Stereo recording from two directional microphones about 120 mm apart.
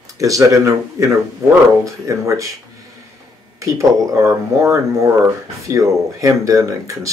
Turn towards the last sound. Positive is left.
turn(degrees=-25)  # may be behind; listen again after turning